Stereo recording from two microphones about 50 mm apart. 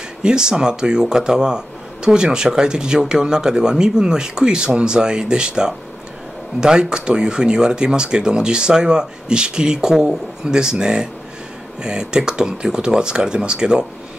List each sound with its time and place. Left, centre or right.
0.2 s speech: centre